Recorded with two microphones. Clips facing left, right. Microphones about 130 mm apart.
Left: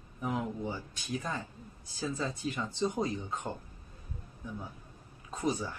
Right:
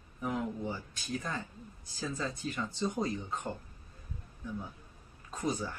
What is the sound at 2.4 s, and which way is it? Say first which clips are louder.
Speech: left 2 dB; 20° left (ahead or behind).